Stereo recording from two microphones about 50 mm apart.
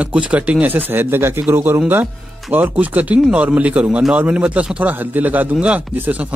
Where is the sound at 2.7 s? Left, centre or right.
Right.